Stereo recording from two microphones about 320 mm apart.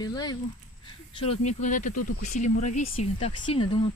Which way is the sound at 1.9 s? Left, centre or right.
Left.